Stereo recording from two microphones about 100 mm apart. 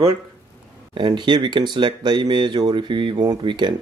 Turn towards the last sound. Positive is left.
turn(degrees=-50)  # may be behind; listen again after turning